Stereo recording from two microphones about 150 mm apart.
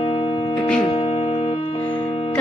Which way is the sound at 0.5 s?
5° left (ahead or behind).